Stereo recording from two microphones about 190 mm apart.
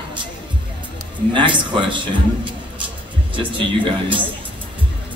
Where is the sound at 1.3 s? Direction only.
25° right (ahead or behind).